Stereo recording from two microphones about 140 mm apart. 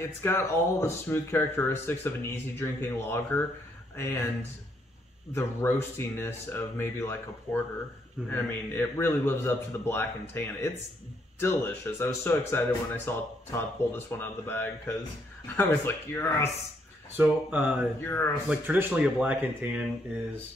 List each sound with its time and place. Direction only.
0.2 s speech: 20° left (ahead or behind)
5.3 s speech: 15° left (ahead or behind)
17.2 s speech: 10° right (ahead or behind)
18.0 s speech: 15° left (ahead or behind)
18.5 s speech: 15° right (ahead or behind)